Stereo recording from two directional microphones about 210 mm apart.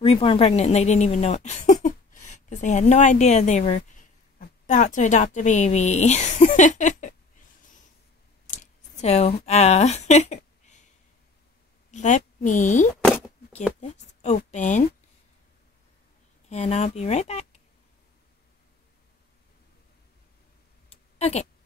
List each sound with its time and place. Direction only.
0.0 s a woman's voice: 30° left (ahead or behind)
8.5 s a sound: 30° left (ahead or behind)
9.5 s speech: 30° left (ahead or behind)
11.9 s a woman's voice: 35° left (ahead or behind)
16.4 s speech: 30° left (ahead or behind)
20.9 s a sound: 30° left (ahead or behind)